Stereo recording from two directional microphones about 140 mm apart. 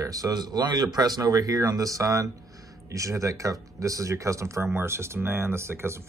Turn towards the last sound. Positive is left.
turn(degrees=-20)  # may be behind; listen again after turning